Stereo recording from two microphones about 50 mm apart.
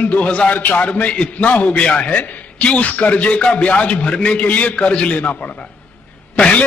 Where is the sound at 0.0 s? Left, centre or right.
Left.